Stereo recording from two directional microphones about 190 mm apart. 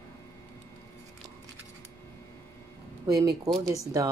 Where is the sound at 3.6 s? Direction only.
15° right (ahead or behind).